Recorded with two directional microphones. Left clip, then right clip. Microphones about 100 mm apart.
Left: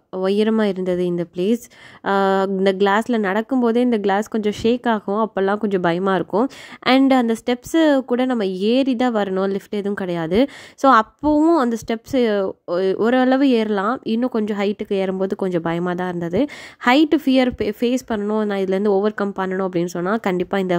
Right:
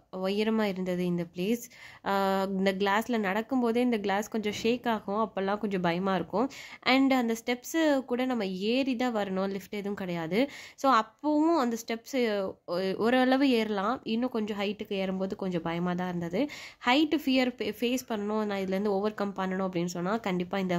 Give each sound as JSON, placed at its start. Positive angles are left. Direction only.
{"t": 0.1, "sound": "speech", "side_deg": 65}
{"t": 11.5, "sound": "speech", "side_deg": 60}